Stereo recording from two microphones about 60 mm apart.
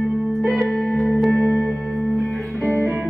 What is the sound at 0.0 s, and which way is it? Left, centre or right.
Music, centre.